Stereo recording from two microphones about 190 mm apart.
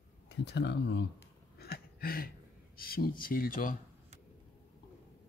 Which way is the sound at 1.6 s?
50° left (ahead or behind).